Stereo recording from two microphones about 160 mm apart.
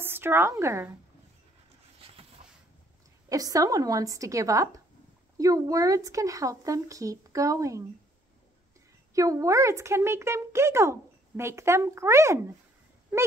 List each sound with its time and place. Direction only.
0.0 s a woman's voice: 15° right (ahead or behind)
2.0 s a sound: 35° right (ahead or behind)
3.3 s speech: 20° right (ahead or behind)
9.1 s speech: 20° right (ahead or behind)